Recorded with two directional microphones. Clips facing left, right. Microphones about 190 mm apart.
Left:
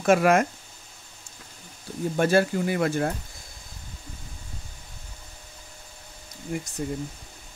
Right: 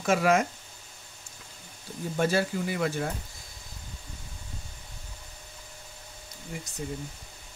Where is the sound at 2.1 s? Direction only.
55° left (ahead or behind).